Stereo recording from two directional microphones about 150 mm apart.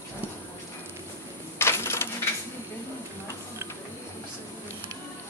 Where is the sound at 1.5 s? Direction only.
15° left (ahead or behind).